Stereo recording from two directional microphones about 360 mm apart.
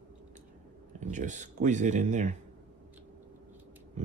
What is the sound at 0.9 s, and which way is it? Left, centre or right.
Speech, centre.